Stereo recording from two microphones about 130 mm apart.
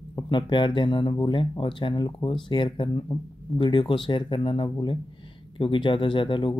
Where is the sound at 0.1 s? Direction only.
35° left (ahead or behind).